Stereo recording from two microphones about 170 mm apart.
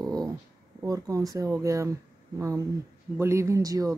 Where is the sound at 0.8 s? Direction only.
20° right (ahead or behind).